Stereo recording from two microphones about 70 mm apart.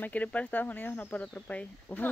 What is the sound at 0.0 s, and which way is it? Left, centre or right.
Speech, left.